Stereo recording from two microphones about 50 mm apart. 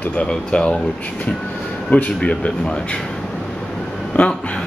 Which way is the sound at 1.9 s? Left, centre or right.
Left.